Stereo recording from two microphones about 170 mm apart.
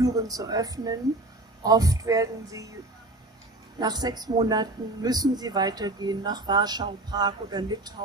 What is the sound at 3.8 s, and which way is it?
Speech, 25° right (ahead or behind).